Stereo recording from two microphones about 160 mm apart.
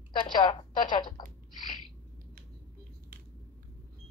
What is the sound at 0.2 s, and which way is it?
A woman's voice, 30° left (ahead or behind).